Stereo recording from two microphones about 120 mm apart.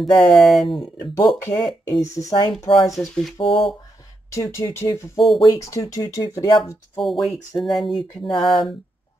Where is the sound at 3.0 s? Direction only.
Centre (ahead or behind).